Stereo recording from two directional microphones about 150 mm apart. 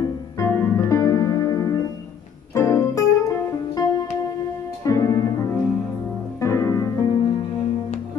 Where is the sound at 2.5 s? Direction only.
20° left (ahead or behind).